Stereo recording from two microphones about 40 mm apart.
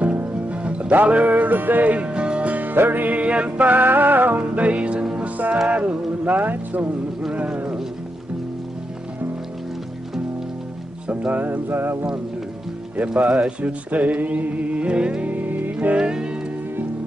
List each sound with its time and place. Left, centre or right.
0.0 s music: right
2.0 s music: right
2.5 s music: right
3.2 s music: right
4.4 s music: right
6.2 s music: right
7.3 s speech: right
11.1 s music: right
11.4 s a sound: right
13.1 s music: right
15.2 s music: right
16.0 s music: centre